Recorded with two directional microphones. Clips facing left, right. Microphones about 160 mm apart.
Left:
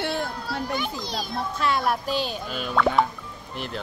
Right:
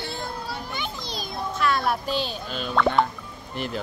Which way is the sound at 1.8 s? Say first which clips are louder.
Left 1 dB; 10° left (ahead or behind).